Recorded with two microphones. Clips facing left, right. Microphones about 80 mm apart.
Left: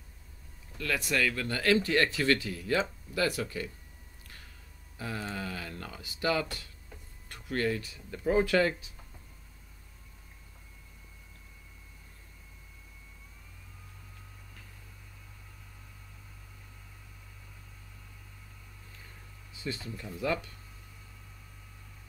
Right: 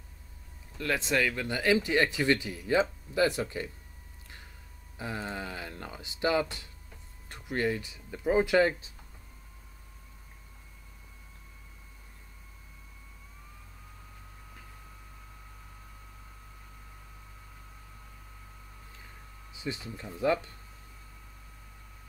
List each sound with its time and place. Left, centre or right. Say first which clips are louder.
0.7 s speech: right 2 dB; right
4.9 s speech: right 1 dB; right
19.5 s speech: right 1 dB; centre